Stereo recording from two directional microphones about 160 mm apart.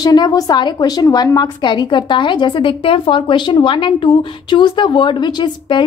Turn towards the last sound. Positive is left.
turn(degrees=30)  # may be behind; listen again after turning